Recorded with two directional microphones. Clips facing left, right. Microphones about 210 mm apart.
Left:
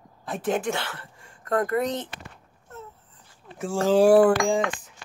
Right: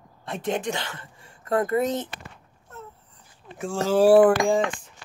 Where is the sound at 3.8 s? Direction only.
15° left (ahead or behind).